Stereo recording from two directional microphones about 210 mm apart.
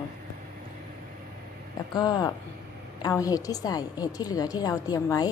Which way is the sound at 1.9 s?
20° left (ahead or behind).